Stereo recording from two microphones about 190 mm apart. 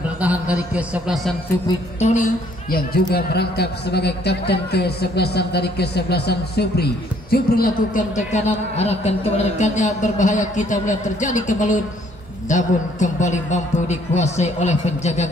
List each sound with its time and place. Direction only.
0.2 s a man's voice: 10° right (ahead or behind)
2.0 s a man's voice: 40° left (ahead or behind)